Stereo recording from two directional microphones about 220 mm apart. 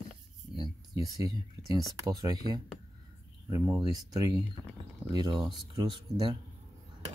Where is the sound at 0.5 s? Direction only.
20° right (ahead or behind).